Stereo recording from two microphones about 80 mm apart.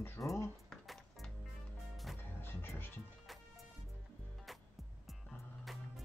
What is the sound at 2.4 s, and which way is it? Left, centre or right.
Music, left.